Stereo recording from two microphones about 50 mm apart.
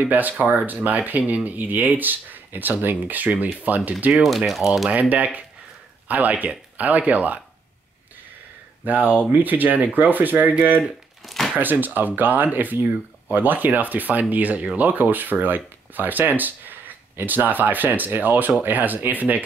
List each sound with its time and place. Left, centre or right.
0.0 s speech: right
4.1 s speech: centre
5.1 s speech: right
8.8 s speech: right
10.8 s crumpling: centre
11.5 s speech: right